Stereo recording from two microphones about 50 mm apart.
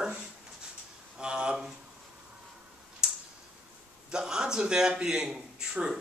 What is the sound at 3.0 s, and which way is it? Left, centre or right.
Tick-tock, centre.